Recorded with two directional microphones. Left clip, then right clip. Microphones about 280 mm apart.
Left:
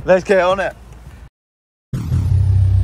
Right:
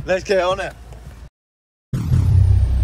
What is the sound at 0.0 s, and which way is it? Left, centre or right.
Speech, centre.